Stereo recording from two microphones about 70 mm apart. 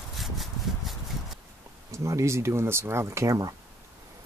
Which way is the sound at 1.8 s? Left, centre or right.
Right.